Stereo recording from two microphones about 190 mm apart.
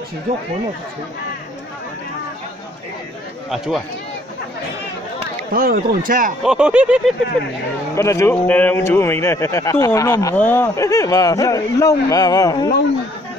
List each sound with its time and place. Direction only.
3.4 s speech: centre (ahead or behind)
5.5 s speech: 50° right (ahead or behind)
6.4 s speech: 5° right (ahead or behind)
7.9 s a man's voice: 15° left (ahead or behind)